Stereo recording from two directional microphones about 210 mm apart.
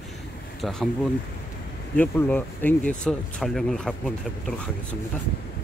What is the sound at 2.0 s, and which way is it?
Speech, 10° left (ahead or behind).